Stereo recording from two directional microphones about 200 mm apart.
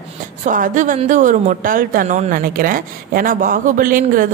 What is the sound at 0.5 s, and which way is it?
A woman's voice, 40° right (ahead or behind).